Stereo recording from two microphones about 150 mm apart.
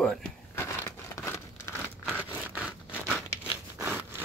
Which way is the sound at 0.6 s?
15° left (ahead or behind).